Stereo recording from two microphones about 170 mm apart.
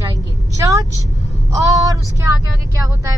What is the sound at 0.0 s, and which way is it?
Vehicle, 20° right (ahead or behind).